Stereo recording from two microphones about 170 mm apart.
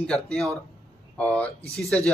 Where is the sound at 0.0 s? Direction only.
5° left (ahead or behind).